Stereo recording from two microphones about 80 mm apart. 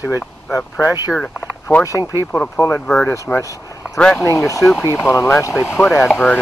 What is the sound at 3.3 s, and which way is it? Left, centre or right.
Speech, centre.